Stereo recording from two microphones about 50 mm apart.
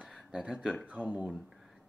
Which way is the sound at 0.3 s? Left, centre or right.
Centre.